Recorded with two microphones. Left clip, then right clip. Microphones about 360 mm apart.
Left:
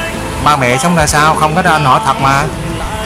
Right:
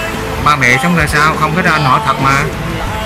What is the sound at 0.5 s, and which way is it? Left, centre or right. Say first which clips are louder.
Speech: even; centre.